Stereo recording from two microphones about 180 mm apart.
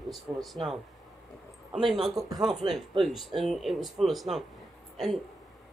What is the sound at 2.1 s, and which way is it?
Speech, 20° right (ahead or behind).